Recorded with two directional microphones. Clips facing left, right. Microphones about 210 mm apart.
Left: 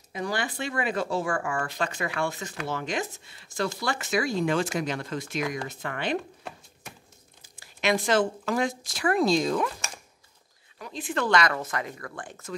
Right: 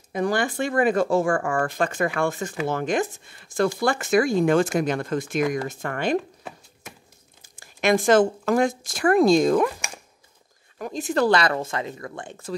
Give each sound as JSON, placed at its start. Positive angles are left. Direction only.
{"t": 0.1, "sound": "speech", "side_deg": -50}
{"t": 7.5, "sound": "speech", "side_deg": -50}
{"t": 10.8, "sound": "speech", "side_deg": -45}